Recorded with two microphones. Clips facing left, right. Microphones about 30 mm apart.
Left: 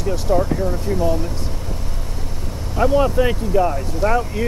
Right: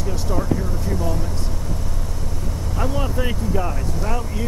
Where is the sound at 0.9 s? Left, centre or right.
Left.